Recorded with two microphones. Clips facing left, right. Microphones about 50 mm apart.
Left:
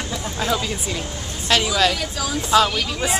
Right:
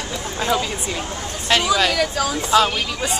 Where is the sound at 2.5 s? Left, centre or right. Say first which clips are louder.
Even; centre.